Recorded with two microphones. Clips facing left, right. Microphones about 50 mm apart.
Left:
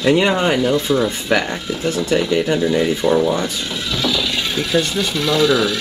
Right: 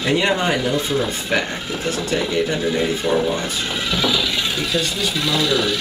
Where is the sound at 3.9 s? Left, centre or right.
Centre.